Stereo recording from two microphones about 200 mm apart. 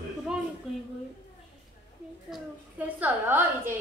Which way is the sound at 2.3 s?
10° right (ahead or behind).